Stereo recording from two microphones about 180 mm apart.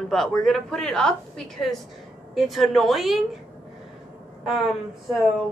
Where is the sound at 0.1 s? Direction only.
Centre (ahead or behind).